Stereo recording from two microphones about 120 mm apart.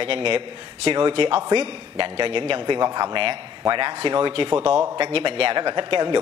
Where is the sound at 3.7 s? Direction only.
45° right (ahead or behind).